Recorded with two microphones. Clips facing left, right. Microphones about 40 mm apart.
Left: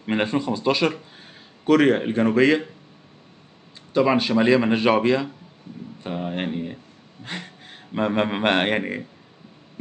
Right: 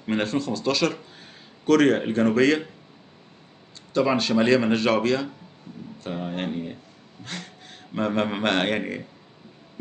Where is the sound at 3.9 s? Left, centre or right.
Centre.